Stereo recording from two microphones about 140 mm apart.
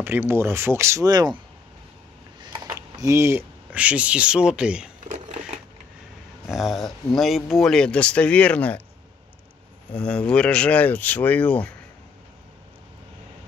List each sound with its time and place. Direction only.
0.0 s speech: 15° right (ahead or behind)
2.4 s speech: 30° right (ahead or behind); by 4.9 s 5° right (ahead or behind)
6.4 s speech: centre (ahead or behind)
9.9 s speech: 10° left (ahead or behind)